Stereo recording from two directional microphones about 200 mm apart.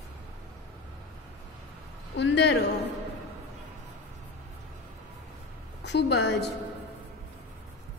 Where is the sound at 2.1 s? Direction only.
60° left (ahead or behind).